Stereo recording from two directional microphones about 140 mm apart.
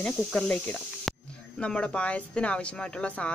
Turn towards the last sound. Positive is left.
turn(degrees=10)  # may be behind; listen again after turning